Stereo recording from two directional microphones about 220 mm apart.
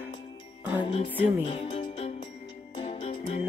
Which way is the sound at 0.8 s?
25° left (ahead or behind).